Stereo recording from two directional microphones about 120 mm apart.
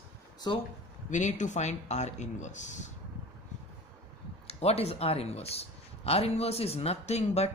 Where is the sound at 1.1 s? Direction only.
90° left.